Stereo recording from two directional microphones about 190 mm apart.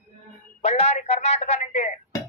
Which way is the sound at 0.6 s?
35° left (ahead or behind).